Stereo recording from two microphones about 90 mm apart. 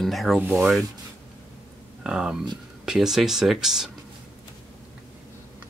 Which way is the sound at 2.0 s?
10° right (ahead or behind).